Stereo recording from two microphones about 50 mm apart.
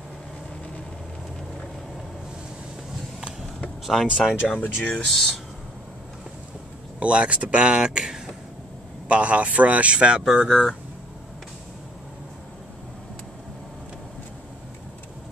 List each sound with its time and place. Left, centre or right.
3.8 s speech: centre
4.8 s speech: centre
7.0 s speech: right
7.7 s speech: centre
9.1 s speech: right